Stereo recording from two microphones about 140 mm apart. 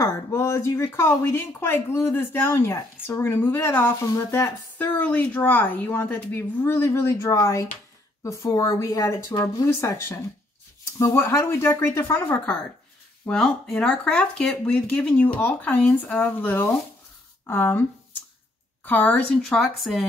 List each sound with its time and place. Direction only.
0.0 s speech: 20° left (ahead or behind)
13.2 s speech: 5° left (ahead or behind)
18.9 s a woman's voice: 10° left (ahead or behind)